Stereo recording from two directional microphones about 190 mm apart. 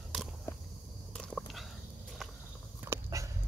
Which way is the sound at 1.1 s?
Centre (ahead or behind).